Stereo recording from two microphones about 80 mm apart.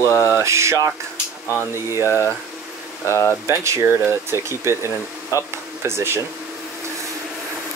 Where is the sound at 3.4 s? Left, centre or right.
Right.